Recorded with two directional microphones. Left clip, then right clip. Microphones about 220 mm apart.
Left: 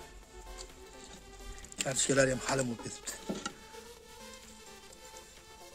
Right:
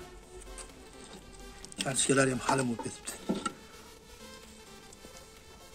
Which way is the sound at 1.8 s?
25° left (ahead or behind).